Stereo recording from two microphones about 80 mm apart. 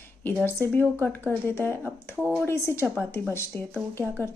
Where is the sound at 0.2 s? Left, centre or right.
Left.